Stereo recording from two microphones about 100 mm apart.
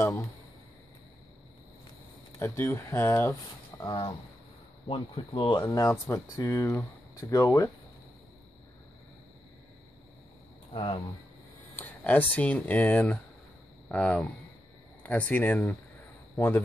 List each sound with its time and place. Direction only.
0.0 s speech: 25° left (ahead or behind)
2.4 s speech: 25° left (ahead or behind)
3.8 s speech: 45° left (ahead or behind)
4.8 s speech: 60° left (ahead or behind)
5.3 s speech: 50° left (ahead or behind)
5.9 s speech: 25° left (ahead or behind)
10.7 s speech: 55° left (ahead or behind)
11.7 s a man's voice: 15° left (ahead or behind)